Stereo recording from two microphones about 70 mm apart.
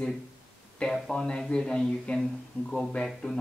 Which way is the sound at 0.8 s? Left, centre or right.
Centre.